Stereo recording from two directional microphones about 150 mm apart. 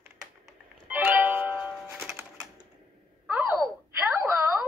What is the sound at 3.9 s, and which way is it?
Wail, 15° right (ahead or behind).